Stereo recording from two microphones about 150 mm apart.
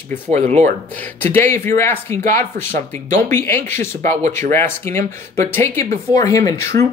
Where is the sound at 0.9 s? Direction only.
10° left (ahead or behind).